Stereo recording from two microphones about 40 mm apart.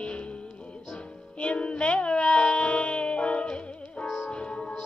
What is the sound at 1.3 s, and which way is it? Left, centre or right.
Music, left.